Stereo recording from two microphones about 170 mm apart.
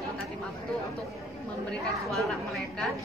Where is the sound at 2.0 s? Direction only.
Centre (ahead or behind).